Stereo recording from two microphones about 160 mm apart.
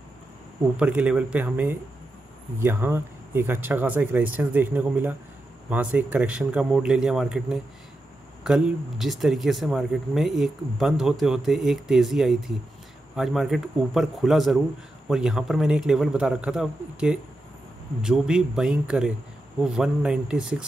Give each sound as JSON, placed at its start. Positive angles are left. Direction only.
{"t": 0.7, "sound": "speech", "side_deg": -10}